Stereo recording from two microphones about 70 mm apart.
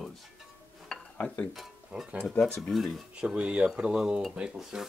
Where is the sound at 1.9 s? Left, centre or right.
Centre.